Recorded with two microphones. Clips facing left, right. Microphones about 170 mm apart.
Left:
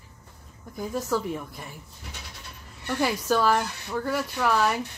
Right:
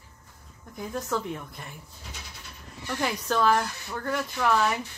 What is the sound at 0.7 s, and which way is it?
Speech, 5° left (ahead or behind).